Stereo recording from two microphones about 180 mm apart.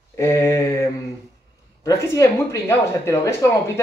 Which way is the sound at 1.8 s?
15° left (ahead or behind).